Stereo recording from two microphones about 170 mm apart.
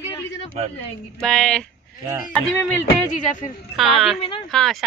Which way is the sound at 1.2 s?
5° left (ahead or behind).